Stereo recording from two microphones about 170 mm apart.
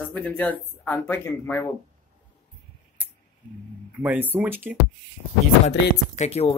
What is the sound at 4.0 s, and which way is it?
Speech, 10° right (ahead or behind).